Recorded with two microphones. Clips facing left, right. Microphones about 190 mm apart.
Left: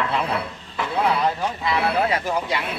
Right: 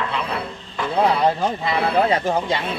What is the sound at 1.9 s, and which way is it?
Speech, 30° right (ahead or behind).